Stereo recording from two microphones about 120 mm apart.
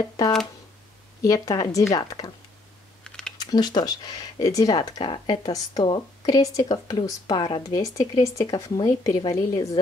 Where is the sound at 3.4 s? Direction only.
35° left (ahead or behind).